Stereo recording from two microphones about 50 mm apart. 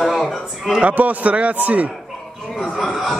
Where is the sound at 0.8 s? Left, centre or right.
Right.